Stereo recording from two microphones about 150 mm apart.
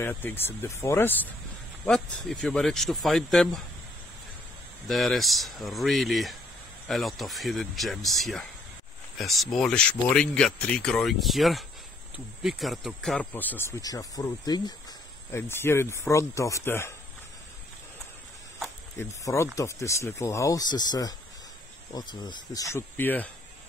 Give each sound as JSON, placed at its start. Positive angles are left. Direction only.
{"t": 0.0, "sound": "speech", "side_deg": 15}
{"t": 1.9, "sound": "speech", "side_deg": 5}
{"t": 4.8, "sound": "speech", "side_deg": 0}
{"t": 18.9, "sound": "speech", "side_deg": 20}